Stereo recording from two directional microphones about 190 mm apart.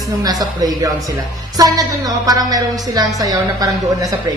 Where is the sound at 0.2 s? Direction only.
20° right (ahead or behind).